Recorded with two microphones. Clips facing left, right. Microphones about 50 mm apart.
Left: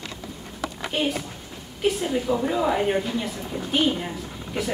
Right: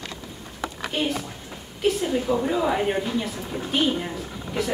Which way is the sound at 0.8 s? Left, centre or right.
Centre.